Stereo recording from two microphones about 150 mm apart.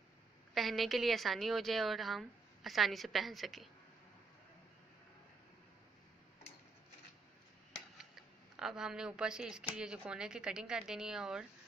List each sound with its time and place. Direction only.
0.6 s a woman's voice: centre (ahead or behind)
8.5 s a woman's voice: 5° right (ahead or behind)